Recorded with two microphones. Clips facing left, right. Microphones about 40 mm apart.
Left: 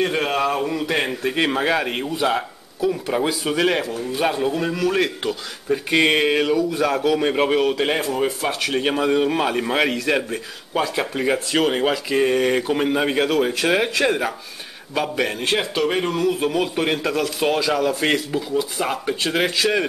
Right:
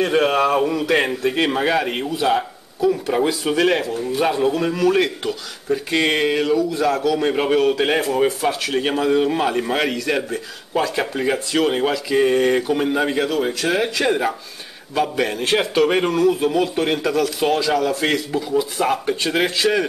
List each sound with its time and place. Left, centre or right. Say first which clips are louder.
0.1 s speech: right 4 dB; centre
5.7 s speech: left 1 dB; centre
7.2 s speech: right 1 dB; centre
8.4 s speech: right 2 dB; centre
13.3 s speech: left 1 dB; left
13.7 s speech: left 1 dB; centre
14.0 s speech: right 1 dB; centre
15.6 s speech: right 4 dB; centre
16.1 s speech: right 3 dB; centre
18.5 s speech: right 5 dB; centre